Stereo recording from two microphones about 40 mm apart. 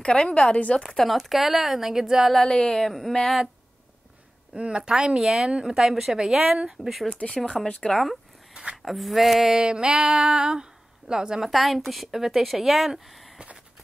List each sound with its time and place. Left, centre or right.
0.0 s speech: left
0.9 s a woman's voice: centre
2.3 s speech: centre
4.6 s speech: right; by 6.5 s centre
6.8 s a woman's voice: centre
8.8 s a woman's voice: centre
9.5 s speech: right
11.4 s a woman's voice: centre